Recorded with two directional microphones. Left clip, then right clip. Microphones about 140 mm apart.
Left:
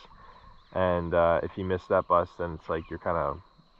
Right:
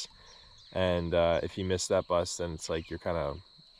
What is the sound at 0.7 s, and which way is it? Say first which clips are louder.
Speech: left 3 dB; 35° right (ahead or behind).